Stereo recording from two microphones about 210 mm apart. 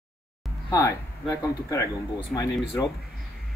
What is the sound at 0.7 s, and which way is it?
A man's voice, 15° left (ahead or behind).